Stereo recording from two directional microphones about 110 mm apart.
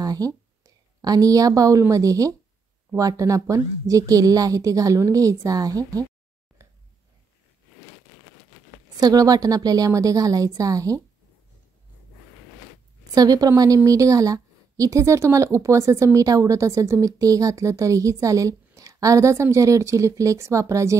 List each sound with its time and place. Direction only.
0.0 s a woman's voice: 35° right (ahead or behind)
8.9 s a woman's voice: 35° right (ahead or behind)
13.1 s a woman's voice: 35° right (ahead or behind)